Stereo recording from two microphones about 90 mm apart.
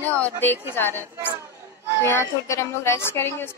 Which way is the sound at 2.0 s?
30° left (ahead or behind).